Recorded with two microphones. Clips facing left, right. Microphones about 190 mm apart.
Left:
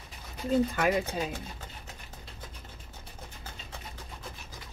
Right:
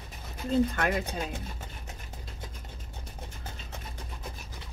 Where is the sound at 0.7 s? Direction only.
5° left (ahead or behind).